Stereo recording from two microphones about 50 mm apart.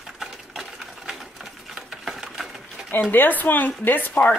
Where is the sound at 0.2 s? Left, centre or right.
Centre.